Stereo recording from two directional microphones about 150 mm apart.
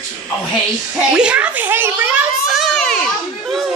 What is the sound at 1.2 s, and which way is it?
Speech, 10° right (ahead or behind).